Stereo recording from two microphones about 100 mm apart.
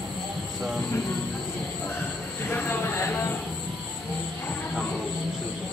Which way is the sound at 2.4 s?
20° left (ahead or behind).